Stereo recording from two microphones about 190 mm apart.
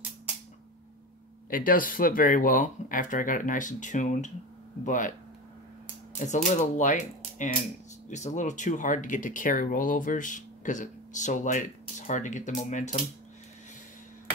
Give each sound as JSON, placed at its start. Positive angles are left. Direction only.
{"t": 1.5, "sound": "speech", "side_deg": 45}
{"t": 6.1, "sound": "speech", "side_deg": 40}